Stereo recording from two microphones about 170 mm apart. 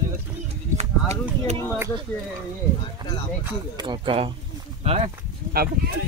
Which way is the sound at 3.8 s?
30° right (ahead or behind).